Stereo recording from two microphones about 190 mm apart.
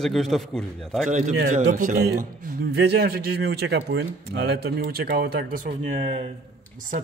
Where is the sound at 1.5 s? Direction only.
45° right (ahead or behind).